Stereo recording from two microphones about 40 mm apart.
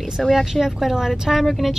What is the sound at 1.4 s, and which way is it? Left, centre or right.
Speech, centre.